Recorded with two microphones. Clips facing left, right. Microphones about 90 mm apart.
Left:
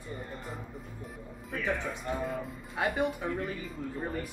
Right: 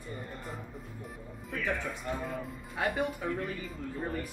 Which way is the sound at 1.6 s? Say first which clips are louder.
Left 2 dB; 5° left (ahead or behind).